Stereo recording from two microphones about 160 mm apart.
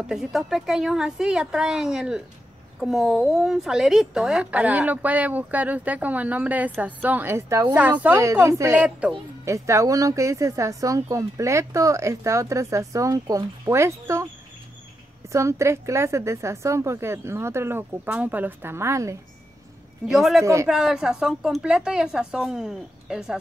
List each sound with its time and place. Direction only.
0.0 s a woman's voice: centre (ahead or behind); by 14.2 s 15° right (ahead or behind)
15.3 s speech: 20° right (ahead or behind)
20.1 s a woman's voice: centre (ahead or behind)